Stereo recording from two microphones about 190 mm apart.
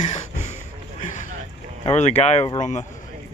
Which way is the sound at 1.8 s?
35° left (ahead or behind).